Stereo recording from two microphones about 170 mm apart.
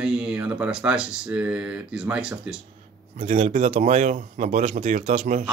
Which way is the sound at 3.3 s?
35° right (ahead or behind).